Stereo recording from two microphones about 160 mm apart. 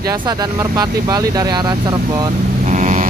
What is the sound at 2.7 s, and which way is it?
Vehicle, 50° right (ahead or behind).